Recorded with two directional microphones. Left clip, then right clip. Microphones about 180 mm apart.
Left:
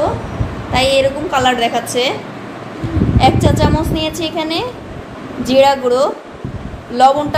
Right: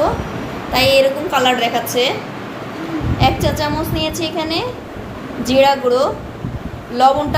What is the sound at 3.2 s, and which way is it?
A woman's voice, 45° left (ahead or behind).